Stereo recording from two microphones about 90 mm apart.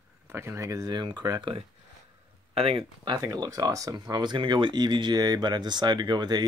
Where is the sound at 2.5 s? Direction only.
90° right.